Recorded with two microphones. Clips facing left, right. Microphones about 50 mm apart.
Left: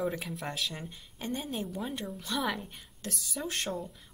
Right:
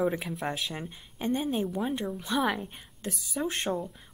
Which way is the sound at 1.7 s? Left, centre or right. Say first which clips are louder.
Right 6 dB; centre.